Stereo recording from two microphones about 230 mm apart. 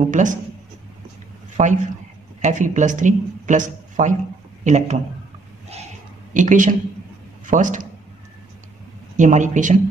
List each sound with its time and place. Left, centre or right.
0.1 s speech: right
2.4 s a man's voice: right
6.3 s speech: right
9.1 s speech: right